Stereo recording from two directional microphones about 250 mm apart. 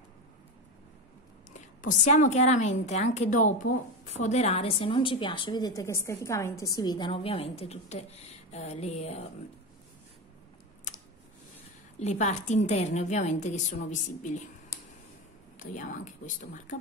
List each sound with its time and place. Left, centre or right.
1.5 s a woman's voice: left
12.0 s a woman's voice: left
15.6 s speech: left